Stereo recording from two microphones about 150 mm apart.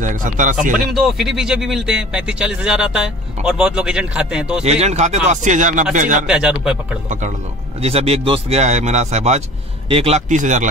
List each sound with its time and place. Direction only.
0.0 s speech: 60° right (ahead or behind)
0.7 s speech: centre (ahead or behind)
4.6 s speech: 45° right (ahead or behind)
6.2 s speech: 5° right (ahead or behind)
7.8 s speech: 40° right (ahead or behind)